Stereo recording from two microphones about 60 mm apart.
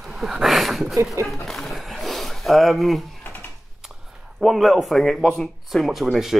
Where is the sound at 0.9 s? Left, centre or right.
Right.